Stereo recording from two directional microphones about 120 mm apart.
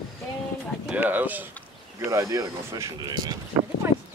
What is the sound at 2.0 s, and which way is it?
Speech, 25° right (ahead or behind).